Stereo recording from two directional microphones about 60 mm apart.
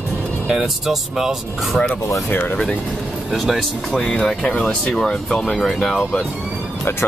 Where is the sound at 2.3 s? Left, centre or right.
Left.